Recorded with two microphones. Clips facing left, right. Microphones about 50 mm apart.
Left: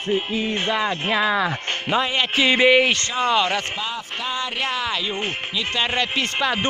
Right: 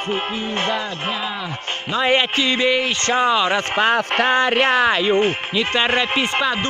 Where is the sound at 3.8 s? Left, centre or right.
Right.